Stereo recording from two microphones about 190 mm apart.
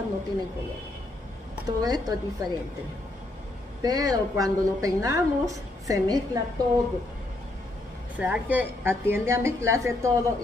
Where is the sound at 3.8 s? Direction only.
20° right (ahead or behind).